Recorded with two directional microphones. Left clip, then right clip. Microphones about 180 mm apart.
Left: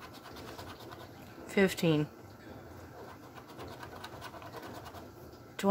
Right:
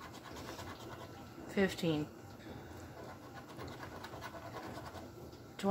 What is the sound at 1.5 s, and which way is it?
Speech, 35° left (ahead or behind).